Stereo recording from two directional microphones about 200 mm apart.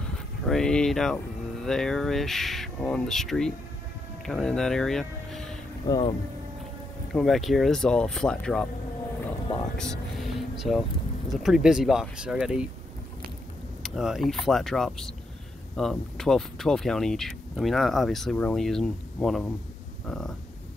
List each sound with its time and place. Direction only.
0.5 s speech: 5° left (ahead or behind)
5.9 s speech: 25° left (ahead or behind)
7.1 s speech: centre (ahead or behind)
9.8 s speech: 5° left (ahead or behind)
13.8 s speech: centre (ahead or behind)